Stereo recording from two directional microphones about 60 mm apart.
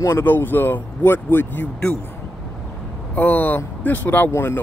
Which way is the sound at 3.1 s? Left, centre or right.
Left.